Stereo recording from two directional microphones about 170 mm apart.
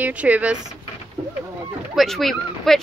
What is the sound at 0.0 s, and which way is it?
Speech, 10° right (ahead or behind).